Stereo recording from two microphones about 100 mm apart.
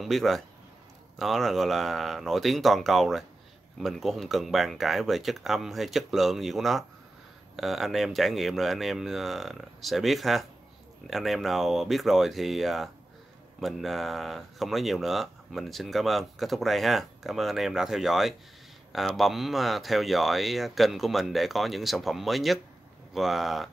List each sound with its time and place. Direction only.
0.0 s speech: centre (ahead or behind)